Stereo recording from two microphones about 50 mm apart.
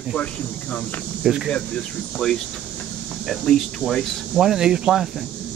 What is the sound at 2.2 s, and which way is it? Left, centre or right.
Speech, centre.